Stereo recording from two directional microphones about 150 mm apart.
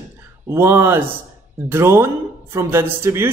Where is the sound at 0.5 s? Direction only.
15° right (ahead or behind).